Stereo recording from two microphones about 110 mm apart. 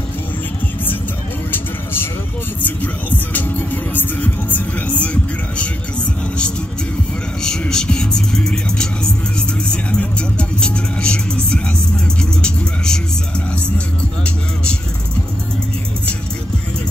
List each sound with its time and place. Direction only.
2.6 s music: 15° left (ahead or behind)
7.4 s music: 5° left (ahead or behind)
9.7 s vehicle: 10° left (ahead or behind)
12.2 s music: 10° left (ahead or behind)